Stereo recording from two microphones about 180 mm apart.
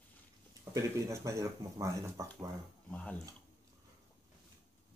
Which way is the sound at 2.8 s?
5° left (ahead or behind).